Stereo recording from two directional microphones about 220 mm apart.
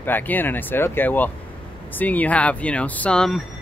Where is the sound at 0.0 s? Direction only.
10° left (ahead or behind).